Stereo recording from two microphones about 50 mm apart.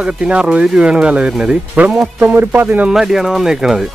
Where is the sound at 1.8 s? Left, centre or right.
Right.